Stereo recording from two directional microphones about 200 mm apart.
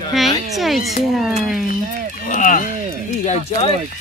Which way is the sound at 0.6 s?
Centre (ahead or behind).